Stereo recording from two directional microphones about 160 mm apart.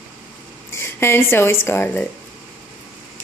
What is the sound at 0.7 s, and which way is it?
Speech, 15° left (ahead or behind).